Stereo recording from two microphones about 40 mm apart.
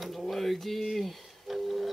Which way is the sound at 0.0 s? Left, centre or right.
Centre.